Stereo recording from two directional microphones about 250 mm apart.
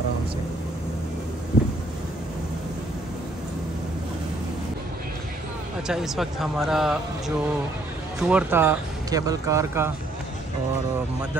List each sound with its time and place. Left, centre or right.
5.9 s speech: centre